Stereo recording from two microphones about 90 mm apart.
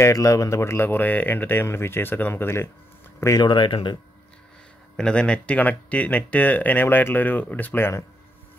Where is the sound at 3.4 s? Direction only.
65° left (ahead or behind).